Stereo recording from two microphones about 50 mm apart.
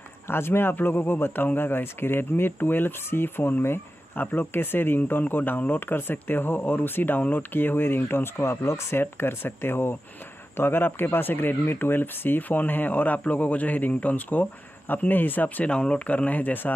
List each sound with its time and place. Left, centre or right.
0.3 s a man's voice: left
9.0 s a man's voice: left